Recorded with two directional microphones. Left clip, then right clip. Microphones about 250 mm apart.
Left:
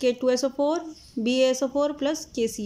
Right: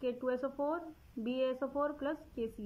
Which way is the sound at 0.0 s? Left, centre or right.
Centre.